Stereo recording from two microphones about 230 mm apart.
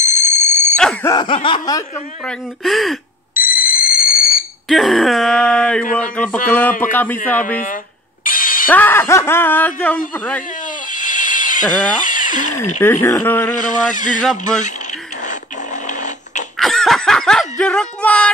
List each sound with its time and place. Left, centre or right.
0.0 s dog: left
0.7 s alarm: centre
1.1 s snicker: left
2.2 s speech: centre
3.4 s fire alarm: left
4.6 s speech: centre
7.6 s a sound: left
8.6 s speech: centre
10.9 s a sound: left
12.8 s speech: centre
13.9 s speech: left
15.2 s music: left
16.5 s snicker: centre